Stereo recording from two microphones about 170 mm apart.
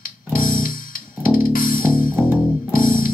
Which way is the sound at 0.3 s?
55° left (ahead or behind).